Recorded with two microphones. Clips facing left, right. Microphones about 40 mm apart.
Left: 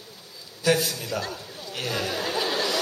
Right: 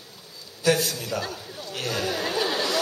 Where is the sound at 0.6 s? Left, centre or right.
Centre.